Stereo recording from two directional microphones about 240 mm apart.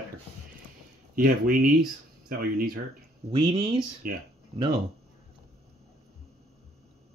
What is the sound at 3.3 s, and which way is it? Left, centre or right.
Speech, right.